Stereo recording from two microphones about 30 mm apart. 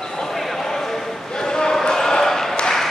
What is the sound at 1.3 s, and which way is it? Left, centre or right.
Basketball bounce, left.